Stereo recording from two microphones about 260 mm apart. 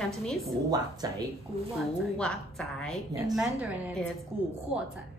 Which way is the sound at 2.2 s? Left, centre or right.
Centre.